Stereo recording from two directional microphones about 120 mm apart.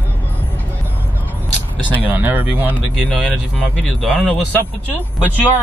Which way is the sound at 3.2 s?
10° left (ahead or behind).